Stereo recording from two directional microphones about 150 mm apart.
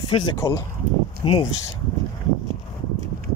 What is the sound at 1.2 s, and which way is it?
Speech, 35° left (ahead or behind).